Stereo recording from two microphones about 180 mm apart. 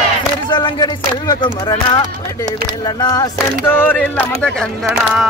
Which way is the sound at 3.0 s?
20° left (ahead or behind).